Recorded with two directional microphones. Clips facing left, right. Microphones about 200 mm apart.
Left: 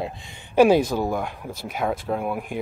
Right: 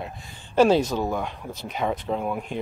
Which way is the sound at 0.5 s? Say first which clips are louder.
Left 2 dB; 10° left (ahead or behind).